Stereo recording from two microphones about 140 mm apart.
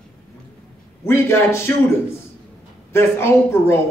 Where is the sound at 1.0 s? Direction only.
20° left (ahead or behind).